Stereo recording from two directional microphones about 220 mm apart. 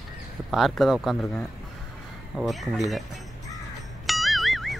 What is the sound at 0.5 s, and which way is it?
Speech, centre (ahead or behind).